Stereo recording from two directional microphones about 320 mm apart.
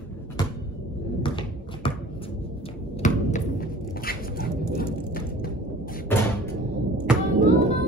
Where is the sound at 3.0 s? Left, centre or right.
Left.